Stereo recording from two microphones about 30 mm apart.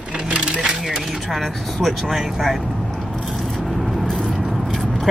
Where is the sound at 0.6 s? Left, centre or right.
Centre.